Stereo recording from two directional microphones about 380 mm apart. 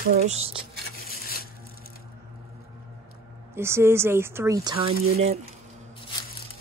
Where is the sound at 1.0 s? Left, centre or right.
Left.